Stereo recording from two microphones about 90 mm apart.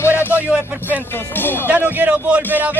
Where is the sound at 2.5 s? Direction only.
20° right (ahead or behind).